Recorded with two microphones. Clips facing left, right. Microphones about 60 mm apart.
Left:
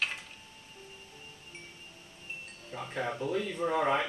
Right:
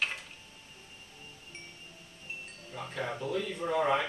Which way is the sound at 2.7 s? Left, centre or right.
Centre.